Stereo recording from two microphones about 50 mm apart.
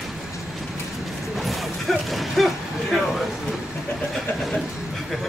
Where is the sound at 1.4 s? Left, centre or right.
Centre.